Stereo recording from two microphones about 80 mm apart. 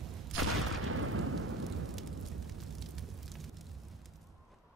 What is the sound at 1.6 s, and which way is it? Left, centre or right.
Fire, centre.